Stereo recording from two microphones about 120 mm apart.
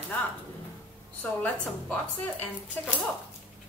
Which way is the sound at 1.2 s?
15° left (ahead or behind).